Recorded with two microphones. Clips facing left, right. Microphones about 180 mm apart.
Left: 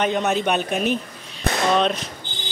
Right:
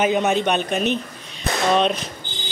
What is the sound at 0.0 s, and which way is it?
Speech, 5° right (ahead or behind).